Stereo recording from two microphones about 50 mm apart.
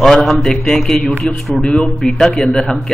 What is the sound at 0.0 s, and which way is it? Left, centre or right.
A man's voice, centre.